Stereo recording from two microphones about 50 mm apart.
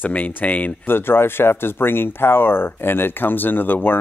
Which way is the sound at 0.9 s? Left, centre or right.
Left.